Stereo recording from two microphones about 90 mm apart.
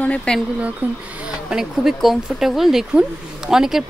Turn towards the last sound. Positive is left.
turn(degrees=-5)  # may be behind; listen again after turning